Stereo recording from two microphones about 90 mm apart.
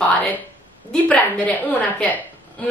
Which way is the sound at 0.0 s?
20° left (ahead or behind).